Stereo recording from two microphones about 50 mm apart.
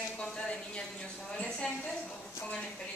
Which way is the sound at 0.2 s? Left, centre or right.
Left.